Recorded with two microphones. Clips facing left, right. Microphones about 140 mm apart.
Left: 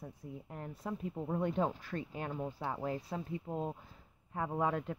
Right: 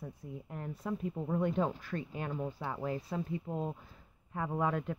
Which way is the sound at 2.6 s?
30° left (ahead or behind).